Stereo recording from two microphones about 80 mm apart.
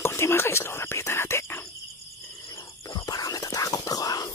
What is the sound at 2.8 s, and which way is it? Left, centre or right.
Whispering, left.